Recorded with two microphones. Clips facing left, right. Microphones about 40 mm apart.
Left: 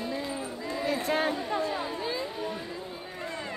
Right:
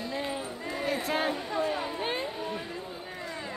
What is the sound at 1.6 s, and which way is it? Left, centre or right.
Chatter, right.